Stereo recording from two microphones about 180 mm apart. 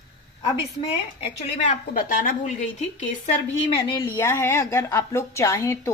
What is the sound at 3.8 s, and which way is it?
A woman's voice, 20° left (ahead or behind).